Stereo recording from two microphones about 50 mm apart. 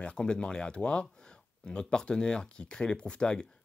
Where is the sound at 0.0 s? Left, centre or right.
Left.